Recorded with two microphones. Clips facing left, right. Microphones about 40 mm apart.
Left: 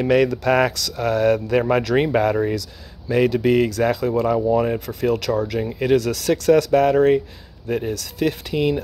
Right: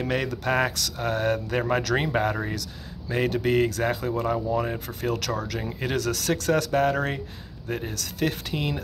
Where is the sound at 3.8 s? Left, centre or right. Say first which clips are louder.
Left 6 dB; left.